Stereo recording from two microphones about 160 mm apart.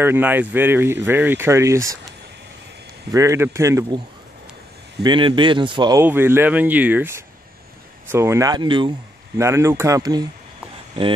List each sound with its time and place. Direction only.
0.0 s speech: 10° right (ahead or behind)
3.1 s speech: 20° right (ahead or behind)
5.0 s speech: 30° right (ahead or behind)
6.0 s speech: 15° right (ahead or behind); by 8.9 s 30° right (ahead or behind)
9.4 s speech: 15° right (ahead or behind)